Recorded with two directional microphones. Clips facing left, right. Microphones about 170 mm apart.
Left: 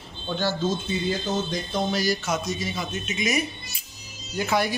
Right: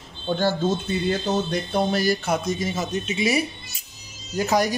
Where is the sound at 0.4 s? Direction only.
60° right (ahead or behind).